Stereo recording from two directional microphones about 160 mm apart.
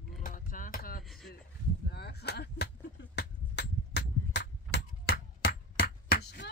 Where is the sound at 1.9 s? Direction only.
90° left.